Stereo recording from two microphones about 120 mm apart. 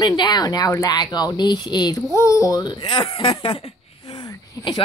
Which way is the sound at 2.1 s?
25° left (ahead or behind).